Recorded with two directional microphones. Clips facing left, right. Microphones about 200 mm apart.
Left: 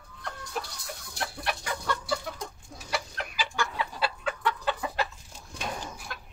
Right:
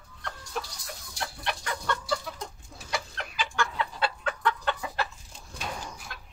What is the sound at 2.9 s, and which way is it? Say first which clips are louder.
Chicken: even; 5° left (ahead or behind).